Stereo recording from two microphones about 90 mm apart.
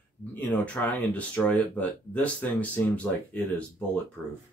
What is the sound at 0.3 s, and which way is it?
Speech, 15° left (ahead or behind).